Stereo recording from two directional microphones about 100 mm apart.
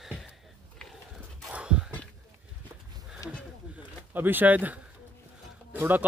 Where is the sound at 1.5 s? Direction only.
10° right (ahead or behind).